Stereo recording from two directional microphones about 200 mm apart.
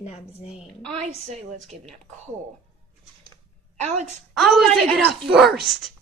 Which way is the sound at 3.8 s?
35° right (ahead or behind).